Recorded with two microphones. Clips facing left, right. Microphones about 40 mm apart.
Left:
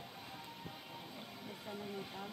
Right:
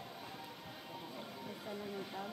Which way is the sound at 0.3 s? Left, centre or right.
Centre.